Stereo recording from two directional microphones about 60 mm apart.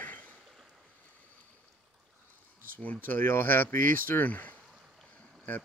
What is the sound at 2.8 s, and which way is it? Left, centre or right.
Speech, left.